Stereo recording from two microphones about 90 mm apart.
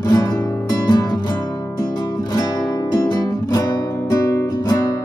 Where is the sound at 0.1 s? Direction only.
45° left (ahead or behind).